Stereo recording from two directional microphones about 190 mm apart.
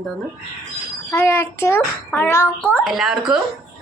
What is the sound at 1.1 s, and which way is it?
A child's voice, 15° left (ahead or behind).